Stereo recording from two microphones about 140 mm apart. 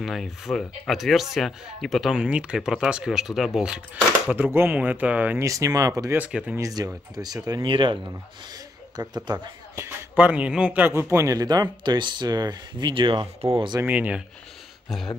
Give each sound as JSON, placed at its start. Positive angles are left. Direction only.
{"t": 0.0, "sound": "speech", "side_deg": 0}
{"t": 5.4, "sound": "speech", "side_deg": -25}
{"t": 6.1, "sound": "speech", "side_deg": -10}
{"t": 6.6, "sound": "speech", "side_deg": -25}
{"t": 10.1, "sound": "speech", "side_deg": -10}
{"t": 13.7, "sound": "speech", "side_deg": -10}